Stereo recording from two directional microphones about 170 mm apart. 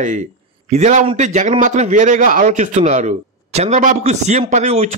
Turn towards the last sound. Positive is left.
turn(degrees=-40)  # may be behind; listen again after turning